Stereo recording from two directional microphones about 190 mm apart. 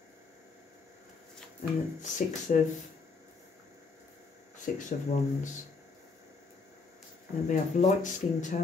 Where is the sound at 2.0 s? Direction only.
40° left (ahead or behind).